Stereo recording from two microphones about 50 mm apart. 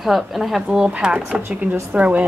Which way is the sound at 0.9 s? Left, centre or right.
Centre.